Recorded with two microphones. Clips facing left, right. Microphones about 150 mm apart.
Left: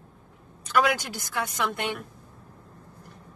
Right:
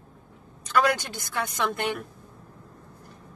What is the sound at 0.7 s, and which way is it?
Speech, centre (ahead or behind).